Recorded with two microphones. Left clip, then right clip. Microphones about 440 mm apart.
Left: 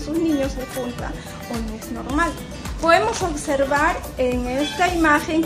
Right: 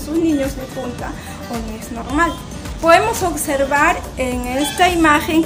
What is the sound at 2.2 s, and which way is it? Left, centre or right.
Speech, left.